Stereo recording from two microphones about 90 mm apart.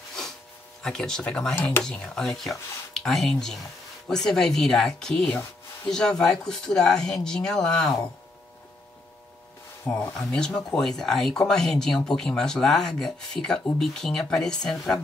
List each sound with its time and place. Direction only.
0.8 s speech: 5° left (ahead or behind)
1.5 s speech: 25° left (ahead or behind)
1.8 s speech: 10° left (ahead or behind)
10.1 s speech: 10° left (ahead or behind)